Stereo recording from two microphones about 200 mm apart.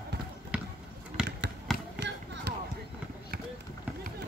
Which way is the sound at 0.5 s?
5° right (ahead or behind).